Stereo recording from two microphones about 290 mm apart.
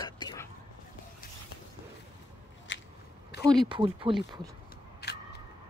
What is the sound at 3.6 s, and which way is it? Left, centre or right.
Speech, centre.